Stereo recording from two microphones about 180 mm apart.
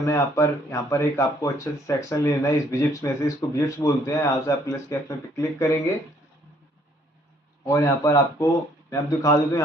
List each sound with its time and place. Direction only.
0.0 s speech: 15° left (ahead or behind)
7.6 s speech: 15° left (ahead or behind)